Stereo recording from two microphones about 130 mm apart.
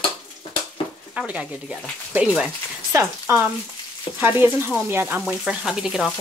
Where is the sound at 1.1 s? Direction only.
5° right (ahead or behind).